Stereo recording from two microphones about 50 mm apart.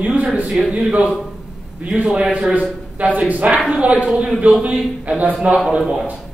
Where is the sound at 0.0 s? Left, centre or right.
Right.